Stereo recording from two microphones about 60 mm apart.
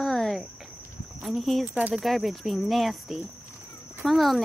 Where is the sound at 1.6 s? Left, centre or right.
Right.